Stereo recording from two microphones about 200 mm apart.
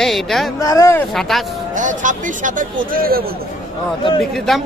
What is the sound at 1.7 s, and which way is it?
A man's voice, 40° right (ahead or behind).